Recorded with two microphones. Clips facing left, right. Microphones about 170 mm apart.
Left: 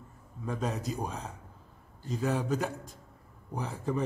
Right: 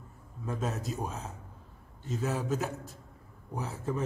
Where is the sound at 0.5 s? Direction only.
Centre (ahead or behind).